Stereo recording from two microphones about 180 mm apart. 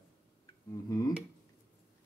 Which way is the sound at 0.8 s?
20° left (ahead or behind).